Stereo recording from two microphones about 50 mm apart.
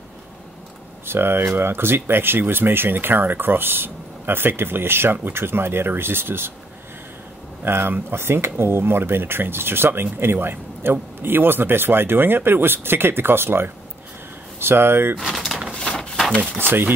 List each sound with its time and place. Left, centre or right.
1.0 s speech: right
7.6 s speech: right
15.1 s bird: centre
15.7 s a sound: centre
16.5 s speech: right